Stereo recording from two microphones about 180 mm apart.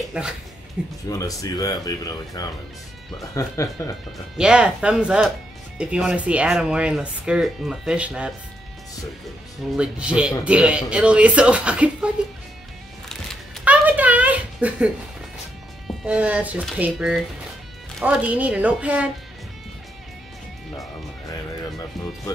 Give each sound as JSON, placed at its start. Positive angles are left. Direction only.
{"t": 0.2, "sound": "speech", "side_deg": -5}
{"t": 1.0, "sound": "speech", "side_deg": 20}
{"t": 4.4, "sound": "speech", "side_deg": -5}
{"t": 9.8, "sound": "speech", "side_deg": -5}
{"t": 13.7, "sound": "a sound", "side_deg": -10}
{"t": 16.1, "sound": "speech", "side_deg": -10}
{"t": 21.3, "sound": "music", "side_deg": 20}